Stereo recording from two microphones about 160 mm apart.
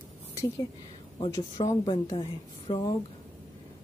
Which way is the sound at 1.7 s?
30° left (ahead or behind).